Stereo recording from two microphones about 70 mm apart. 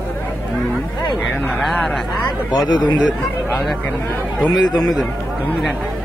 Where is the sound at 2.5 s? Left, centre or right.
Left.